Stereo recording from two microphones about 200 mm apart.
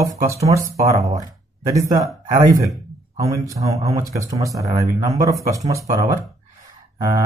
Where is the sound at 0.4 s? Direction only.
15° right (ahead or behind).